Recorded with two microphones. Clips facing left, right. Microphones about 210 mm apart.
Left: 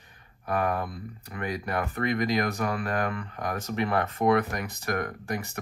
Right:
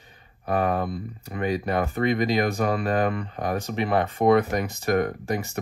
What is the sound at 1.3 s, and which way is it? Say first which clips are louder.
Speech: right 6 dB; 25° right (ahead or behind).